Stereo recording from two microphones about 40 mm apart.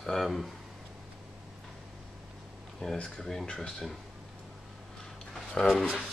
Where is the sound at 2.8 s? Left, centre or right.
Left.